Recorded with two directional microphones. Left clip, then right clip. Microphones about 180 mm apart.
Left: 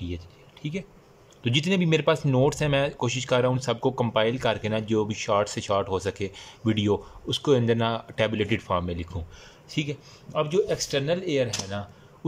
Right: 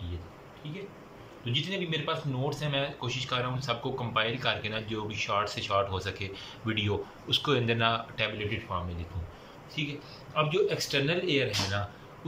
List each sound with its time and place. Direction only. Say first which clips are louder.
0.6 s speech: left 7 dB; 55° left (ahead or behind)
10.3 s speech: left 3 dB; 35° left (ahead or behind)